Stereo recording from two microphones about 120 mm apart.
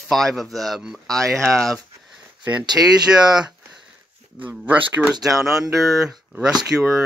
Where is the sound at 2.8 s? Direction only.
15° right (ahead or behind).